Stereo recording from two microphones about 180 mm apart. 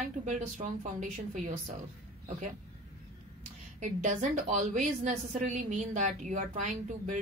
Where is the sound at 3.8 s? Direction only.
45° right (ahead or behind).